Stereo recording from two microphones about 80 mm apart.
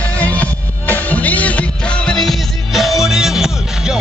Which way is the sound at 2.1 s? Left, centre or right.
Centre.